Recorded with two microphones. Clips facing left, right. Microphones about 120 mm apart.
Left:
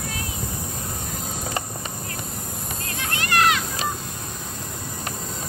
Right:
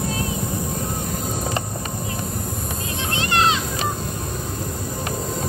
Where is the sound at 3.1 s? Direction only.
25° right (ahead or behind).